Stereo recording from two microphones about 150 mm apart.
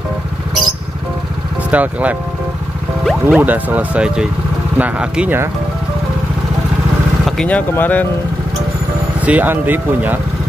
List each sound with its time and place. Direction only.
1.7 s speech: 10° right (ahead or behind)
7.2 s speech: 5° left (ahead or behind)
9.2 s speech: 10° right (ahead or behind)